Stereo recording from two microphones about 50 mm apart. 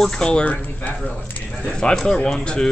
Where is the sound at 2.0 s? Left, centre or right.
Centre.